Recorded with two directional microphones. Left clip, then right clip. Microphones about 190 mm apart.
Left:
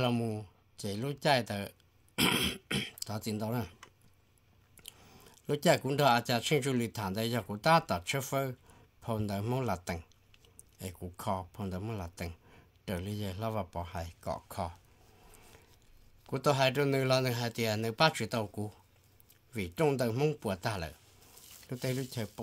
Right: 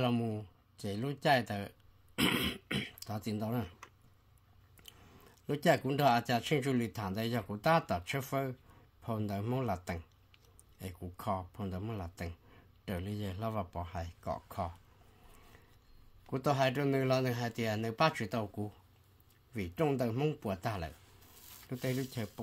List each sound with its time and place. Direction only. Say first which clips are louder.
0.0 s speech: left 2 dB; 35° left (ahead or behind)
4.7 s a man's voice: left 3 dB; 30° left (ahead or behind)
16.3 s a man's voice: left 3 dB; 35° left (ahead or behind)